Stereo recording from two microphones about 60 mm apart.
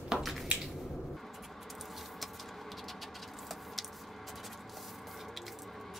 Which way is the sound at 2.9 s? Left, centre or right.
Centre.